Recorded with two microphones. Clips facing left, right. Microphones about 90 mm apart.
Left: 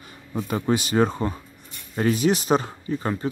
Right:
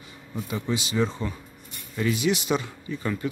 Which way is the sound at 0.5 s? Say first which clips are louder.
Left 6 dB; 50° left (ahead or behind).